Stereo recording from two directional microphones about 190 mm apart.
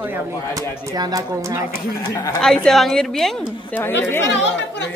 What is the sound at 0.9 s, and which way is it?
Speech, 20° right (ahead or behind).